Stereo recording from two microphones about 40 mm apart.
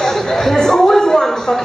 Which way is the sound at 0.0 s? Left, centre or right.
Centre.